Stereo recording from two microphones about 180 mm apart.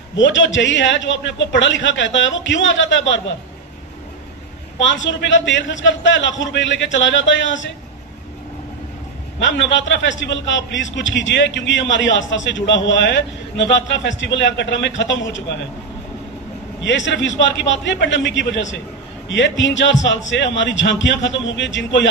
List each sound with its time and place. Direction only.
0.1 s a man's voice: 90° left
4.7 s a man's voice: 90° left
9.4 s a man's voice: 90° left
16.8 s a man's voice: 90° left